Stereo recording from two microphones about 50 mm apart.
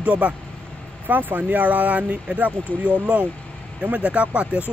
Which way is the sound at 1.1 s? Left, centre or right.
Right.